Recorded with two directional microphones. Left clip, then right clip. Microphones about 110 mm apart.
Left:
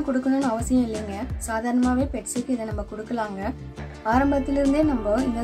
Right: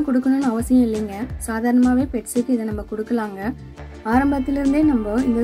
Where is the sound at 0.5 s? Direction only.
30° right (ahead or behind).